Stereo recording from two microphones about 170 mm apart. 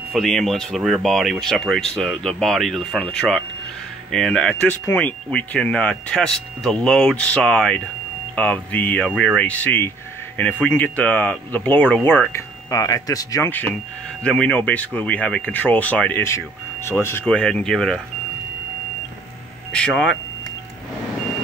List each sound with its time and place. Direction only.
0.1 s speech: centre (ahead or behind)
19.7 s speech: 5° left (ahead or behind)